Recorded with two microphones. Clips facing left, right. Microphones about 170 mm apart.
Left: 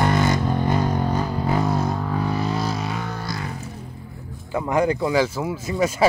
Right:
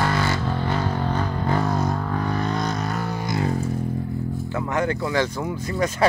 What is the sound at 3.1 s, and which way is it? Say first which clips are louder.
Music: right 4 dB; 15° right (ahead or behind).